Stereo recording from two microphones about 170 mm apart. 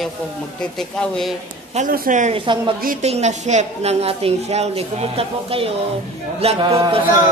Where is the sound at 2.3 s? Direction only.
30° right (ahead or behind).